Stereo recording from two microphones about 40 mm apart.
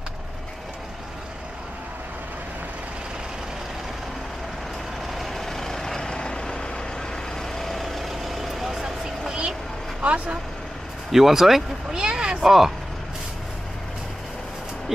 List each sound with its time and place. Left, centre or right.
5.1 s vehicle: centre
8.8 s a sound: centre
10.0 s speech: right
11.1 s speech: centre
11.9 s speech: right
12.4 s speech: centre